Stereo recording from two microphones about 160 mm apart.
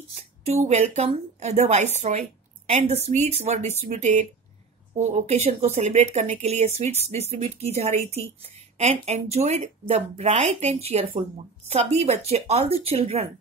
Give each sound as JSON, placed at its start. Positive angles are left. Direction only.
{"t": 0.1, "sound": "a woman's voice", "side_deg": -40}